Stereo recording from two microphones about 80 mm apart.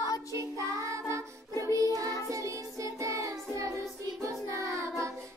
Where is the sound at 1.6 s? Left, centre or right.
Right.